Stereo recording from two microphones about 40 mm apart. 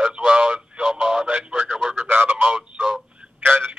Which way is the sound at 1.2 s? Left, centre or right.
Right.